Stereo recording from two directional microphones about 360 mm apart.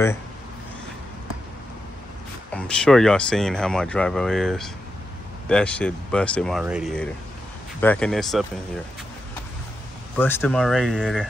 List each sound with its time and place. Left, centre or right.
2.5 s speech: centre
10.1 s speech: centre